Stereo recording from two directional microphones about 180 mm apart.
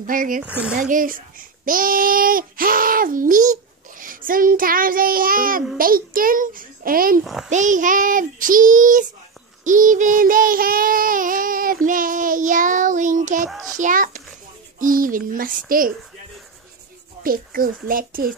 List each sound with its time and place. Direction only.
0.0 s child singing: 50° right (ahead or behind)
0.4 s speech: 5° right (ahead or behind)
0.7 s child singing: 45° right (ahead or behind)
13.7 s a child's voice: 45° right (ahead or behind)
14.8 s child singing: 50° right (ahead or behind)
17.2 s child singing: 55° right (ahead or behind)